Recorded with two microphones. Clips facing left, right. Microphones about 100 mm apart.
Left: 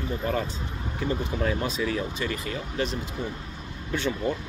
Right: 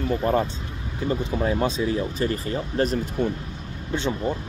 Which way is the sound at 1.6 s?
25° right (ahead or behind).